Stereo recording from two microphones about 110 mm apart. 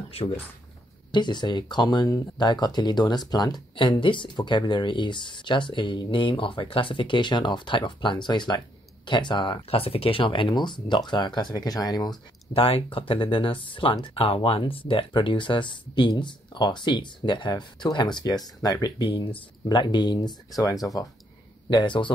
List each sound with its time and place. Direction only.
0.2 s speech: 60° left (ahead or behind)
1.1 s speech: 45° left (ahead or behind)
12.5 s speech: 55° left (ahead or behind); by 19.0 s 35° left (ahead or behind)
19.0 s speech: 50° left (ahead or behind); by 21.1 s 35° left (ahead or behind)
21.7 s speech: 45° left (ahead or behind)